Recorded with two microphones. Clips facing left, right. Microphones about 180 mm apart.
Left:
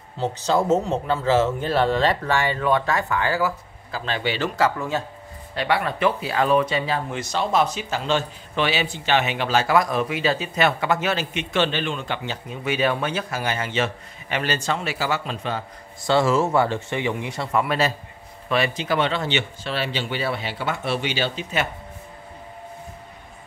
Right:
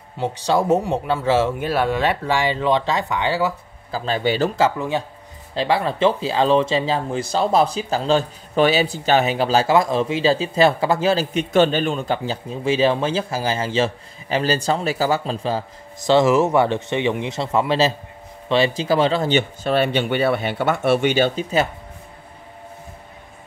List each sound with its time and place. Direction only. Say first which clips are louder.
0.2 s speech: right 2 dB; 15° right (ahead or behind)
3.9 s speech: right 5 dB; 40° right (ahead or behind)
4.6 s speech: right 3 dB; 20° right (ahead or behind)
16.0 s a man's voice: right 4 dB; 20° right (ahead or behind); by 21.5 s 50° right (ahead or behind)